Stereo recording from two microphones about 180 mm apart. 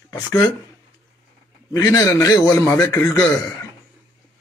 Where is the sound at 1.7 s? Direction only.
15° left (ahead or behind).